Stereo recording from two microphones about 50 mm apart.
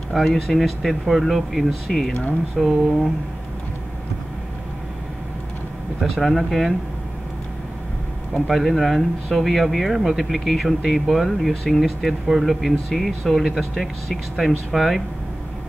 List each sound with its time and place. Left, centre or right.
0.1 s speech: centre
5.9 s speech: centre
8.5 s speech: centre